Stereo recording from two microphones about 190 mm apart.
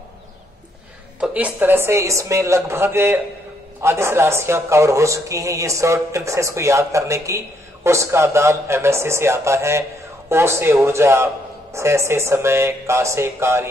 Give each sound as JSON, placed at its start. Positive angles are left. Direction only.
{"t": 1.2, "sound": "a man's voice", "side_deg": -5}